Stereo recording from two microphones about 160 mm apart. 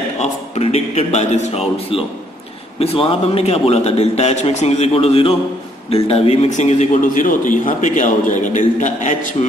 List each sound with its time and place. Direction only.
0.2 s a man's voice: 40° left (ahead or behind)